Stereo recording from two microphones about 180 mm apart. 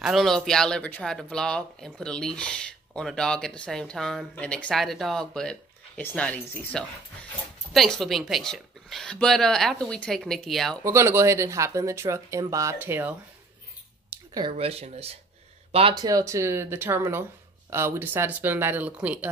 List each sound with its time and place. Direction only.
0.0 s speech: centre (ahead or behind)
10.8 s speech: 15° right (ahead or behind)
14.3 s speech: 30° right (ahead or behind); by 19.1 s 5° right (ahead or behind)